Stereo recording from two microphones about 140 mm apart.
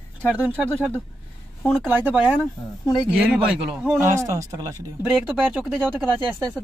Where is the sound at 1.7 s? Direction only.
5° right (ahead or behind).